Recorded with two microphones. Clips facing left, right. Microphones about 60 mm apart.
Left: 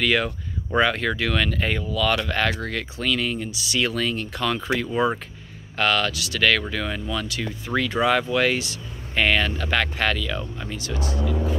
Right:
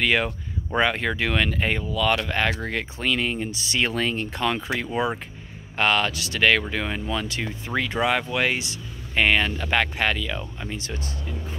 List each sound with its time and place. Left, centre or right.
0.0 s speech: right
4.6 s speech: centre
5.8 s speech: right
7.7 s speech: centre
10.8 s speech: right
11.2 s music: left